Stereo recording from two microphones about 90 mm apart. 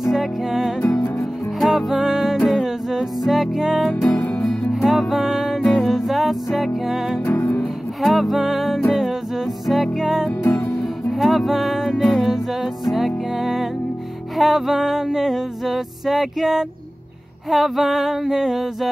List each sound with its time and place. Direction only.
0.0 s music: centre (ahead or behind)
3.9 s music: 15° left (ahead or behind)
4.4 s music: centre (ahead or behind)
7.2 s music: 25° left (ahead or behind)
7.6 s music: centre (ahead or behind)